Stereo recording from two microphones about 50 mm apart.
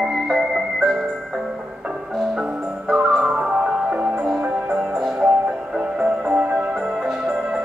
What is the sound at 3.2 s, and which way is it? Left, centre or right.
Music, right.